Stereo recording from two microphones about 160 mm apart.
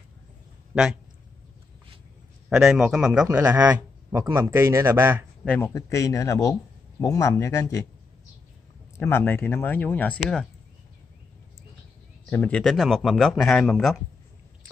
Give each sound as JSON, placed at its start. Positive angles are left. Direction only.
{"t": 2.5, "sound": "speech", "side_deg": -5}
{"t": 5.6, "sound": "speech", "side_deg": 20}
{"t": 8.9, "sound": "speech", "side_deg": 15}
{"t": 12.3, "sound": "speech", "side_deg": 10}